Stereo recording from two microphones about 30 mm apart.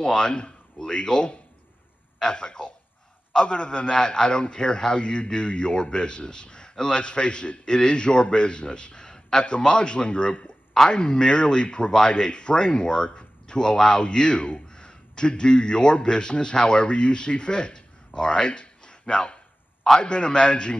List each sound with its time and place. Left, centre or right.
0.0 s a man's voice: left